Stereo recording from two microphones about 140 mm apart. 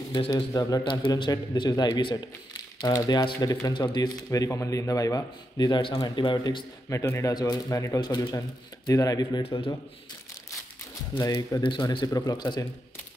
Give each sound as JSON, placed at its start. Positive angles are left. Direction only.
{"t": 0.1, "sound": "a man's voice", "side_deg": 30}
{"t": 6.9, "sound": "speech", "side_deg": 20}
{"t": 9.4, "sound": "a man's voice", "side_deg": 40}
{"t": 11.1, "sound": "a man's voice", "side_deg": 30}